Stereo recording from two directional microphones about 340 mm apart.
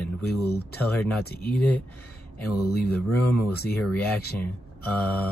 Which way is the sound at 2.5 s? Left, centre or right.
Left.